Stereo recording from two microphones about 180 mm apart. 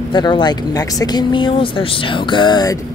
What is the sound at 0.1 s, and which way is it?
Speech, 25° left (ahead or behind).